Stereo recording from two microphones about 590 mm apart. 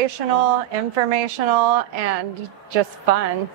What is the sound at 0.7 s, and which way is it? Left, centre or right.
A woman's voice, right.